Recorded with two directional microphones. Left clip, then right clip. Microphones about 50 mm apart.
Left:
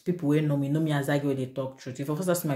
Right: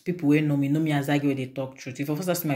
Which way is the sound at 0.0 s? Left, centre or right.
Left.